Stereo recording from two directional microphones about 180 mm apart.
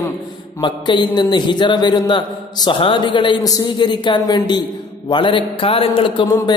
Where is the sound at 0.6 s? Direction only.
25° left (ahead or behind).